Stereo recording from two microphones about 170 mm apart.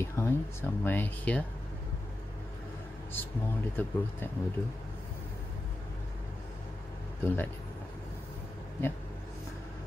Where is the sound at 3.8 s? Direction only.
10° left (ahead or behind).